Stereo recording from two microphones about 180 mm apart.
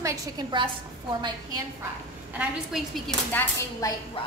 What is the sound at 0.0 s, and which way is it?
Speech, 20° right (ahead or behind).